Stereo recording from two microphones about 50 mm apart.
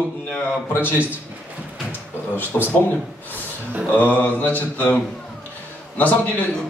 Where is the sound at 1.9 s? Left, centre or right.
Left.